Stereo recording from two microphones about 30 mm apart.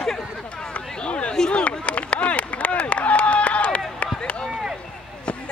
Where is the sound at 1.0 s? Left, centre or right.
Left.